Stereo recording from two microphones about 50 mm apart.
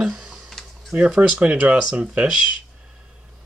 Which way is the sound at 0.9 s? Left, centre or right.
Centre.